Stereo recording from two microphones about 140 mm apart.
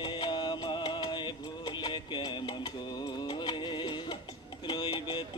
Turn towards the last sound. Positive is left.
turn(degrees=35)  # may be behind; listen again after turning